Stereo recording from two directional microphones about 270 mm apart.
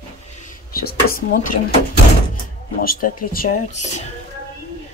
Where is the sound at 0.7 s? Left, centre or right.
Left.